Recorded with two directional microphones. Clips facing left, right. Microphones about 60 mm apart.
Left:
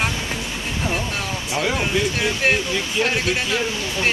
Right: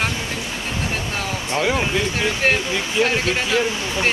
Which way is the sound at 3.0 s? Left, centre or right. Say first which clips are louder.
Right 1 dB; centre.